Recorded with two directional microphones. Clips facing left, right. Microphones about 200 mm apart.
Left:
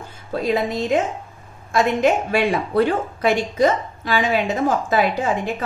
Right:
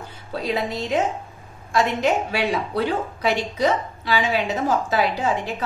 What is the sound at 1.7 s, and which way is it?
A woman's voice, 50° left (ahead or behind).